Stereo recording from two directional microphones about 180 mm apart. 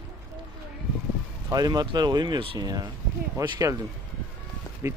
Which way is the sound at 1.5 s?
20° right (ahead or behind).